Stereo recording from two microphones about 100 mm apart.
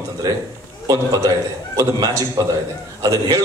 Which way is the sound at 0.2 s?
40° right (ahead or behind).